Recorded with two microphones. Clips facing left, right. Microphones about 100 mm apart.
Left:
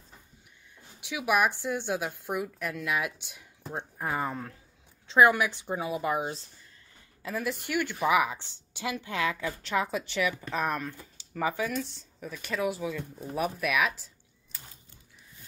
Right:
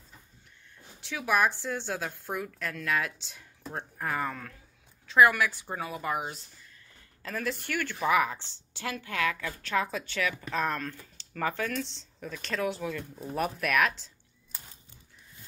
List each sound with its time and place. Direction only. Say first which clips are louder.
1.0 s a woman's voice: left 1 dB; 15° left (ahead or behind)